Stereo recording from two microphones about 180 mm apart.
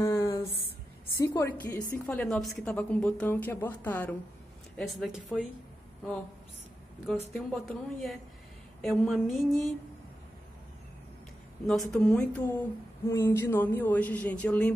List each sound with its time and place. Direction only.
0.0 s a sound: 15° left (ahead or behind)
1.1 s a woman's voice: 15° left (ahead or behind); by 5.4 s centre (ahead or behind)
7.3 s speech: centre (ahead or behind)
11.6 s a woman's voice: centre (ahead or behind)